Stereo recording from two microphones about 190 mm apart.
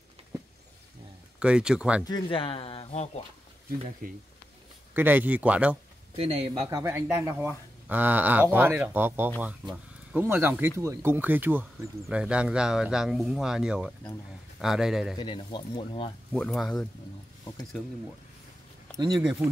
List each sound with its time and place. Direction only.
1.4 s speech: 5° right (ahead or behind)
2.0 s speech: 25° left (ahead or behind)
4.0 s speech: 50° right (ahead or behind)
4.9 s speech: 10° right (ahead or behind)
6.1 s speech: 30° right (ahead or behind)
6.7 s speech: 15° right (ahead or behind)
15.1 s speech: 25° left (ahead or behind)
16.3 s speech: 5° left (ahead or behind)
18.9 s speech: 20° right (ahead or behind)